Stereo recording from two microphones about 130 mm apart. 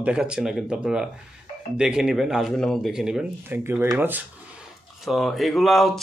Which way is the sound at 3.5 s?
15° right (ahead or behind).